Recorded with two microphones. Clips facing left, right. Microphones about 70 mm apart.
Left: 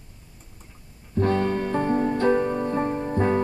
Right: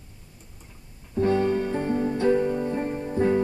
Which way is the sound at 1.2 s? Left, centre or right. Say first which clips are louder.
Right 1 dB; left.